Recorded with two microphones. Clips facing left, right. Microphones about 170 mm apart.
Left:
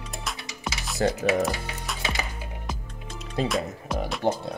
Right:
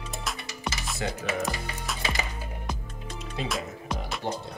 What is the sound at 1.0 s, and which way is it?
Speech, 40° left (ahead or behind).